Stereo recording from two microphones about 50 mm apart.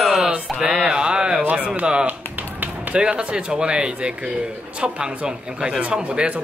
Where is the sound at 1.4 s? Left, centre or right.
Right.